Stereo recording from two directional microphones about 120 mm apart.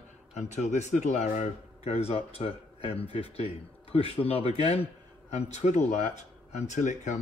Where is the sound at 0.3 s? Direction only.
75° left (ahead or behind).